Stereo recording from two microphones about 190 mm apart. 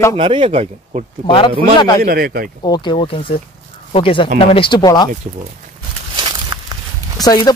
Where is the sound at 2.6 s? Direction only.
25° left (ahead or behind).